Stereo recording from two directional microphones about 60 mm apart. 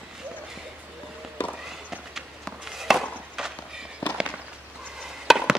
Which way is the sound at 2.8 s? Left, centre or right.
Centre.